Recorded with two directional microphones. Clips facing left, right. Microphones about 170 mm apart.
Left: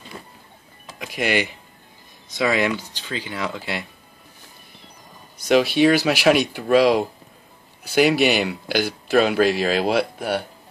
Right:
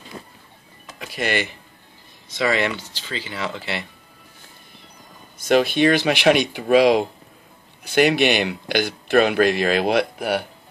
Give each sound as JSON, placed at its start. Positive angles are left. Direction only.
{"t": 0.9, "sound": "speech", "side_deg": 10}
{"t": 5.8, "sound": "speech", "side_deg": 5}
{"t": 9.7, "sound": "speech", "side_deg": -55}
{"t": 10.1, "sound": "speech", "side_deg": 0}